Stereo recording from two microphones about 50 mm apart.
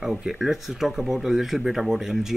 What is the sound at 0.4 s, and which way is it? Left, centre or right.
Speech, centre.